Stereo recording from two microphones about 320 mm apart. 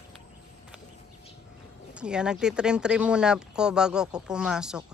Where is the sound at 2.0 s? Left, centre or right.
Centre.